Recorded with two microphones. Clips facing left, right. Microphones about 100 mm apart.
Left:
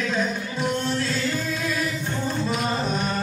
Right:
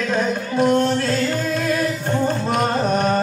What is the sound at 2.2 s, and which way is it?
Music, 60° right (ahead or behind).